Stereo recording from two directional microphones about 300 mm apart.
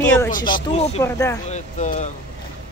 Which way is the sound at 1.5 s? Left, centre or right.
Left.